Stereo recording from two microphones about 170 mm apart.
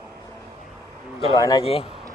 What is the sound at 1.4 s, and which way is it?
Speech, 20° left (ahead or behind).